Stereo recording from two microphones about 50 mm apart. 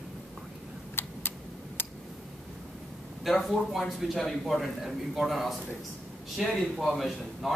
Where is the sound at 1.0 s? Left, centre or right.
Left.